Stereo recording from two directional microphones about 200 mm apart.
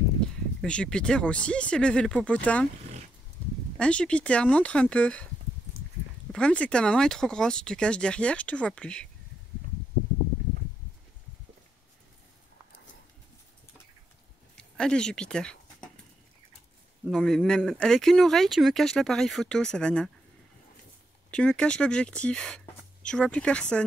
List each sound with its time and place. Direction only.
0.6 s speech: 5° left (ahead or behind)
3.4 s a sound: 5° left (ahead or behind)
3.7 s speech: 5° left (ahead or behind)
6.3 s speech: 5° left (ahead or behind)
14.6 s speech: 5° left (ahead or behind)
17.1 s speech: 5° left (ahead or behind)
21.3 s speech: 5° left (ahead or behind)